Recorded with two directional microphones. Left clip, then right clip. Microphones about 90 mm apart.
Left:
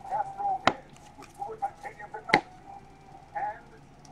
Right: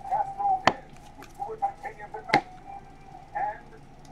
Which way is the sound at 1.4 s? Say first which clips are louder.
Right 2 dB; 5° right (ahead or behind).